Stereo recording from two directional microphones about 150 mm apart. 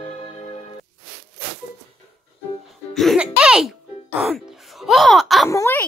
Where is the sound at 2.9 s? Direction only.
Centre (ahead or behind).